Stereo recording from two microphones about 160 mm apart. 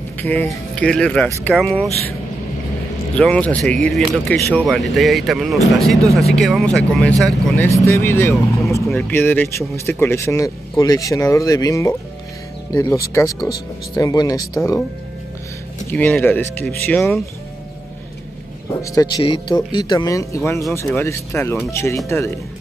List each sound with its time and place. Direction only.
0.2 s speech: 10° left (ahead or behind)
3.2 s speech: 5° left (ahead or behind)
7.6 s speech: 20° left (ahead or behind)
8.8 s speech: 5° left (ahead or behind); by 14.6 s 20° left (ahead or behind)
15.9 s speech: 10° left (ahead or behind)
18.8 s speech: 20° left (ahead or behind)